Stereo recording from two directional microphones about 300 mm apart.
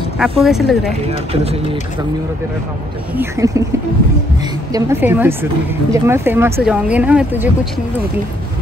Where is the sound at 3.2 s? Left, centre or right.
Centre.